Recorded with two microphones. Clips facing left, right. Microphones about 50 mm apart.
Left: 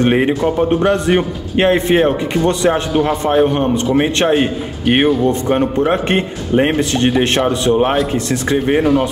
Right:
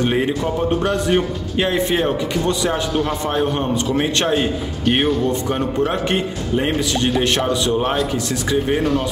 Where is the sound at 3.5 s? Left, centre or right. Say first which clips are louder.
Left 5 dB; left.